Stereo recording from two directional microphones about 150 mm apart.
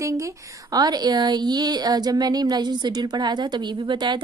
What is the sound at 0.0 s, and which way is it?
A woman's voice, 25° right (ahead or behind).